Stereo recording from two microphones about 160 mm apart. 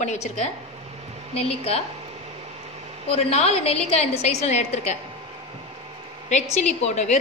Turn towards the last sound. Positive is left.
turn(degrees=45)  # may be behind; listen again after turning